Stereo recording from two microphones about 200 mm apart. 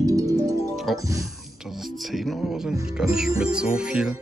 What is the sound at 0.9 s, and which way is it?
Speech, 15° right (ahead or behind).